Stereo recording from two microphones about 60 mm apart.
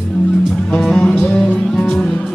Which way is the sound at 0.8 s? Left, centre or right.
Centre.